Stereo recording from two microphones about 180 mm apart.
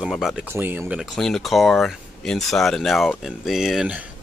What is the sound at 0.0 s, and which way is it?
Speech, centre (ahead or behind).